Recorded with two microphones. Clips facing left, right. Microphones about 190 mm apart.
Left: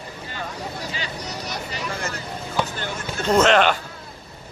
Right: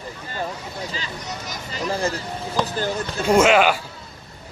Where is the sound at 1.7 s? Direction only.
35° right (ahead or behind).